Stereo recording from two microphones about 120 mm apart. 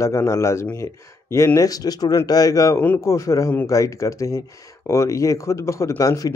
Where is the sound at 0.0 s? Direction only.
25° left (ahead or behind).